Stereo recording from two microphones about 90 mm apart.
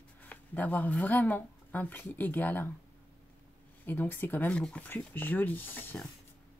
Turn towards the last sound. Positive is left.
turn(degrees=20)  # may be behind; listen again after turning